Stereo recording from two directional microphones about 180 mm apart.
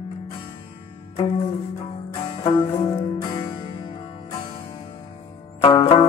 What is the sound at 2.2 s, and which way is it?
Music, 30° left (ahead or behind).